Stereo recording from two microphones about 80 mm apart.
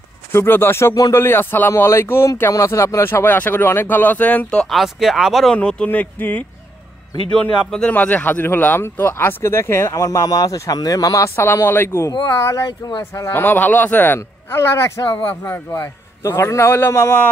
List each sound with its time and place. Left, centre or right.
0.3 s speech: left
4.6 s speech: centre
5.5 s speech: centre
5.9 s speech: left
7.9 s speech: centre; by 11.2 s left
11.2 s speech: left
13.3 s speech: left
15.0 s speech: left
15.4 s speech: left
16.2 s speech: left